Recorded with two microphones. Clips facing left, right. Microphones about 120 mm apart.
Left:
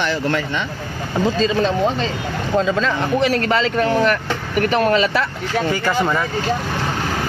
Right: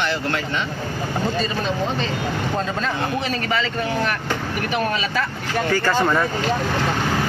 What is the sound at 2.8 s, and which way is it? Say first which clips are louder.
Speech: left 5 dB; 75° left (ahead or behind).